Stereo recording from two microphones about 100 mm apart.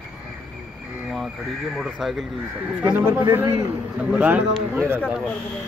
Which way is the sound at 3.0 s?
20° right (ahead or behind).